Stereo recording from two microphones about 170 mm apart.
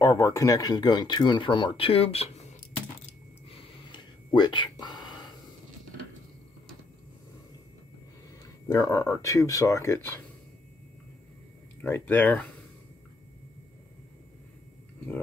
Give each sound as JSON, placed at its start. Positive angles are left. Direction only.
{"t": 0.0, "sound": "speech", "side_deg": 20}
{"t": 3.4, "sound": "whispering", "side_deg": 35}
{"t": 8.6, "sound": "speech", "side_deg": 20}
{"t": 11.8, "sound": "speech", "side_deg": 10}